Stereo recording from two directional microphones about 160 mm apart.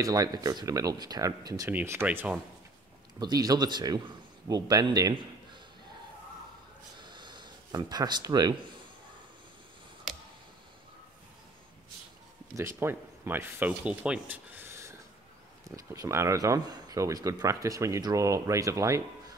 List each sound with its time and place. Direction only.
0.0 s speech: 20° right (ahead or behind)
3.2 s a man's voice: 25° right (ahead or behind)
7.0 s a sound: 30° right (ahead or behind)
10.1 s tick: centre (ahead or behind)
12.5 s speech: 15° right (ahead or behind)